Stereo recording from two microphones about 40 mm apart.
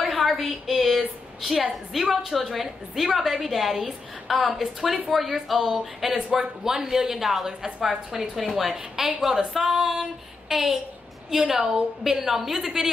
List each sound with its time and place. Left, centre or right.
0.0 s a woman's voice: centre
11.3 s a woman's voice: centre